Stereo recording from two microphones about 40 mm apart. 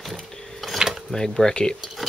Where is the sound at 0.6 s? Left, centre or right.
Centre.